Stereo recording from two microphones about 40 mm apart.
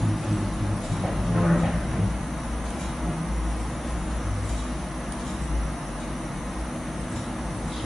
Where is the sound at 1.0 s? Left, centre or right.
Centre.